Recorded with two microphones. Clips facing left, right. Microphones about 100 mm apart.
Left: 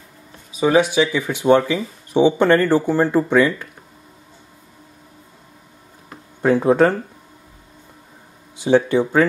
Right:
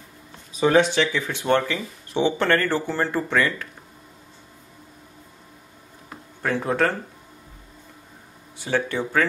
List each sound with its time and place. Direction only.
0.5 s speech: 5° left (ahead or behind)
6.4 s speech: 20° left (ahead or behind)
8.5 s speech: 20° left (ahead or behind)